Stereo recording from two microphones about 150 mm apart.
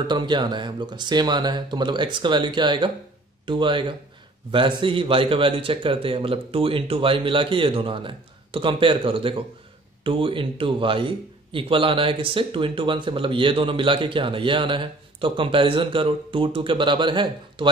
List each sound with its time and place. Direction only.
0.0 s a man's voice: 30° right (ahead or behind)